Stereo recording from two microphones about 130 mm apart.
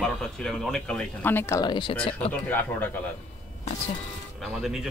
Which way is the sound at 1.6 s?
35° left (ahead or behind).